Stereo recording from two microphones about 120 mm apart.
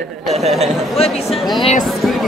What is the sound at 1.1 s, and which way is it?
Speech, 60° left (ahead or behind).